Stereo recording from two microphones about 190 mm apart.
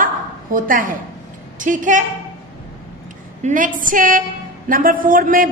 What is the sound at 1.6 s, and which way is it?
Speech, 45° right (ahead or behind).